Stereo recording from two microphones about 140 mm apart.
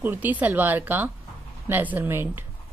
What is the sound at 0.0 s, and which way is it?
Speech, 15° right (ahead or behind).